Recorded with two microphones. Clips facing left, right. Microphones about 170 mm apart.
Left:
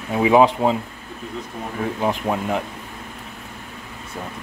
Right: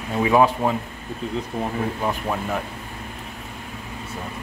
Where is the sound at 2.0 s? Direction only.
15° left (ahead or behind).